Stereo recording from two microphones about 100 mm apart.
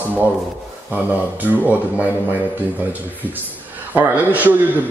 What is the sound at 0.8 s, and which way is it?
Speech, 15° right (ahead or behind).